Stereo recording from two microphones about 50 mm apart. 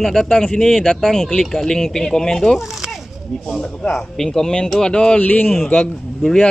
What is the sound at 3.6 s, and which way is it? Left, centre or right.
Speech, centre.